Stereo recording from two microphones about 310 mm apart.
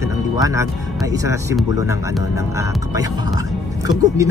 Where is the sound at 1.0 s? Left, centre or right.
Centre.